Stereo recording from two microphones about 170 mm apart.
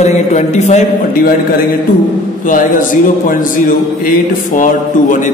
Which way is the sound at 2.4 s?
50° left (ahead or behind).